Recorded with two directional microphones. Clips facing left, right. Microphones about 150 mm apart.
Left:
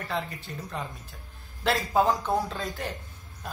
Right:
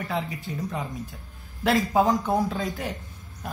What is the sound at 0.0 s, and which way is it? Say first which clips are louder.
Speech: right 3 dB; 5° right (ahead or behind).